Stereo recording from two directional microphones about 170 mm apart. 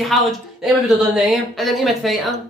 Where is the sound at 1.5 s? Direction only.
Centre (ahead or behind).